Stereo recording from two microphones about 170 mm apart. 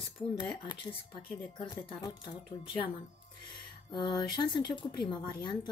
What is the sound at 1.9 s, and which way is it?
Speech, 25° left (ahead or behind).